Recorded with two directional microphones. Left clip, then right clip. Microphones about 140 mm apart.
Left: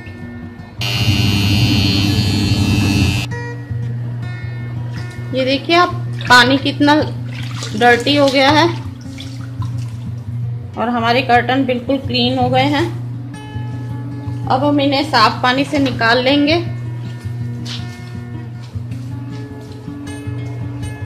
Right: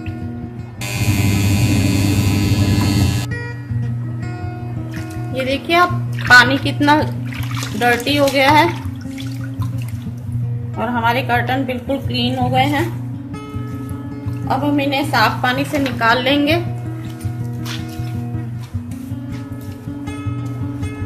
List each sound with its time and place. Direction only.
1.0 s music: 25° right (ahead or behind)
5.3 s a woman's voice: 35° left (ahead or behind)
10.8 s a woman's voice: 40° left (ahead or behind)
14.5 s a woman's voice: 30° left (ahead or behind)